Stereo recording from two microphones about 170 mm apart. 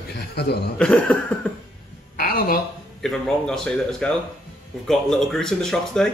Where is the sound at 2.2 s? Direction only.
60° left (ahead or behind).